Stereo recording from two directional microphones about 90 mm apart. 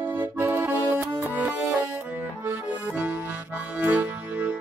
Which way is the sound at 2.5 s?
20° right (ahead or behind).